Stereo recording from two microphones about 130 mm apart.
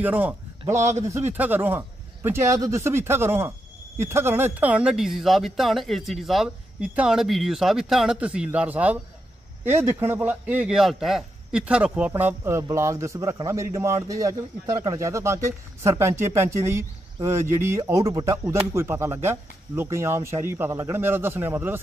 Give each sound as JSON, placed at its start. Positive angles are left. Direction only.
{"t": 0.0, "sound": "a man's voice", "side_deg": -15}